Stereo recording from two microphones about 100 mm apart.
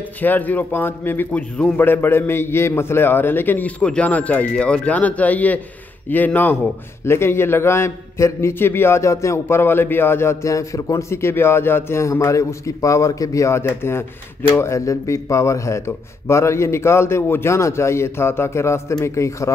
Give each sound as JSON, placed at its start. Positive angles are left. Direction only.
{"t": 0.2, "sound": "a man's voice", "side_deg": 15}